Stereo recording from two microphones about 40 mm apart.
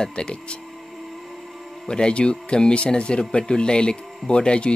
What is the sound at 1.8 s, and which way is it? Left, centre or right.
Speech, left.